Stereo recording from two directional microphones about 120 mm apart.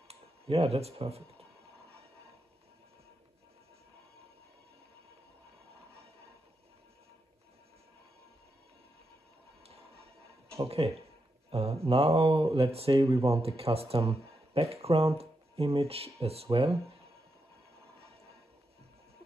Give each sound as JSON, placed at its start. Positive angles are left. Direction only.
{"t": 0.1, "sound": "speech", "side_deg": -55}
{"t": 10.5, "sound": "speech", "side_deg": -55}